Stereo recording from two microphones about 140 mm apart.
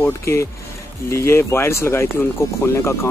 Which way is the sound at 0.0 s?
20° left (ahead or behind).